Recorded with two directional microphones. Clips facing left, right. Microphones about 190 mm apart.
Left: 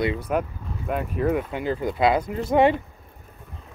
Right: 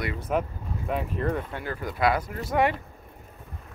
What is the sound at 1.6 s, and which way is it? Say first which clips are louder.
Speech: left 4 dB; 20° left (ahead or behind).